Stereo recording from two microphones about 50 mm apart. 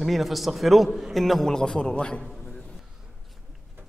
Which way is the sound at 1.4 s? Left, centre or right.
Centre.